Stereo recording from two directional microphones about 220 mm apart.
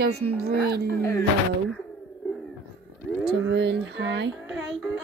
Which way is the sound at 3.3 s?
55° right (ahead or behind).